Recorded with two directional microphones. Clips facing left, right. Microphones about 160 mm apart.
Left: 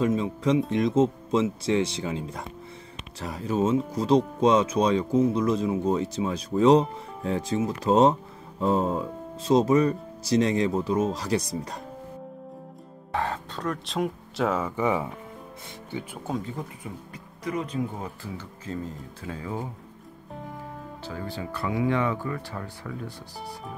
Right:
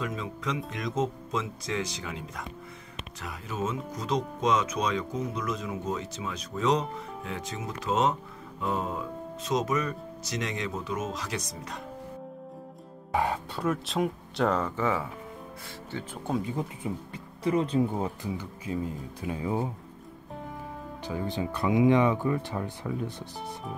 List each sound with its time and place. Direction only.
0.0 s speech: 30° left (ahead or behind)
13.1 s speech: 10° right (ahead or behind); by 15.0 s 15° left (ahead or behind)
16.4 s speech: 20° right (ahead or behind)
18.4 s speech: 10° right (ahead or behind)
21.0 s speech: 15° right (ahead or behind)